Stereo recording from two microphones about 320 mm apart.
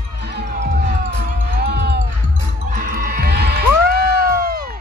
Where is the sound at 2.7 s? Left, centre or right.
Right.